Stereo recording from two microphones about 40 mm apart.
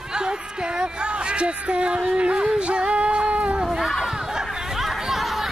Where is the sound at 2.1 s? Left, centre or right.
Right.